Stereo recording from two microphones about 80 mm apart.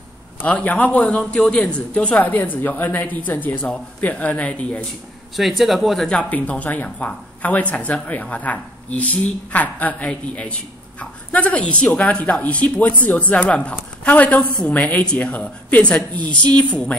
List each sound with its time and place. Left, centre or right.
0.4 s a woman's voice: centre
5.3 s speech: centre
6.0 s a woman's voice: centre